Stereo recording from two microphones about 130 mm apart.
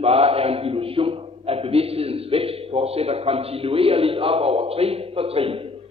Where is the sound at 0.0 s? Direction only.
50° right (ahead or behind).